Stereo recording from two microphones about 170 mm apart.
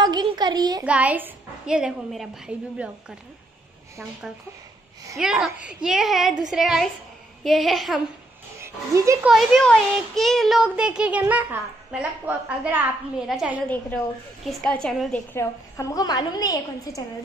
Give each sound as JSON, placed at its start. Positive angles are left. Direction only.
{"t": 0.0, "sound": "a sound", "side_deg": -25}
{"t": 0.8, "sound": "a woman's voice", "side_deg": -10}
{"t": 5.1, "sound": "speech", "side_deg": 0}
{"t": 8.5, "sound": "speech", "side_deg": -15}
{"t": 9.2, "sound": "speech", "side_deg": 0}
{"t": 13.7, "sound": "a woman's voice", "side_deg": 10}
{"t": 15.3, "sound": "a woman's voice", "side_deg": 20}